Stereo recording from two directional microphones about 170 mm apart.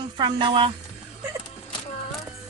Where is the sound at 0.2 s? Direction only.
30° right (ahead or behind).